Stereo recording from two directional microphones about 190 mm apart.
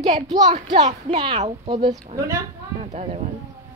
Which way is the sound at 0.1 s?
25° right (ahead or behind).